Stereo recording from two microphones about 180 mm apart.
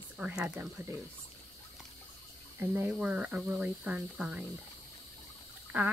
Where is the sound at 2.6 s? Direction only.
10° right (ahead or behind).